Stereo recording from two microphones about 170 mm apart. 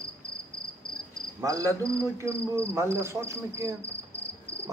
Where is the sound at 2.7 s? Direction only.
15° right (ahead or behind).